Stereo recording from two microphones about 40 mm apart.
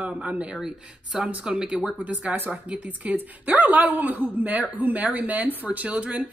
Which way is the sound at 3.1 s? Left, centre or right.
Right.